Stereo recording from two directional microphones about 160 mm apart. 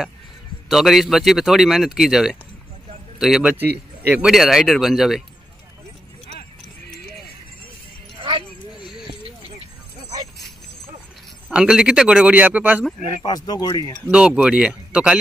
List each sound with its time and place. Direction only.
0.7 s a man's voice: centre (ahead or behind)
8.2 s music: 35° right (ahead or behind)
11.5 s speech: 5° right (ahead or behind)
13.2 s speech: 25° left (ahead or behind)
14.0 s speech: 5° right (ahead or behind)